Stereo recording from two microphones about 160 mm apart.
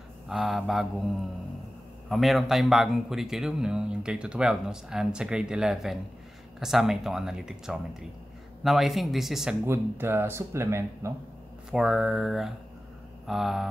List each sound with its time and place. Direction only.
0.3 s speech: centre (ahead or behind)
2.0 s speech: centre (ahead or behind)
9.7 s speech: 15° right (ahead or behind)
11.7 s speech: 5° right (ahead or behind)